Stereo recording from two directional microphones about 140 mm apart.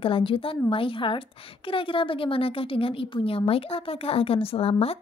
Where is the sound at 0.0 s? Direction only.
40° left (ahead or behind).